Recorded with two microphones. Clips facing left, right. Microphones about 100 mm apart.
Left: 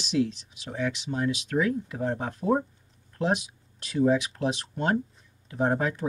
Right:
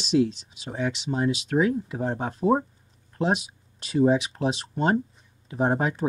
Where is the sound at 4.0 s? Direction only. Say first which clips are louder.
Right 2 dB; 30° right (ahead or behind).